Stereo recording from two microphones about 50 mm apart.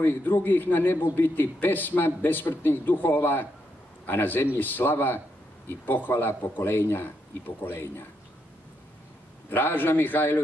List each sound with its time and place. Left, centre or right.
0.0 s a man's voice: left
9.5 s a man's voice: left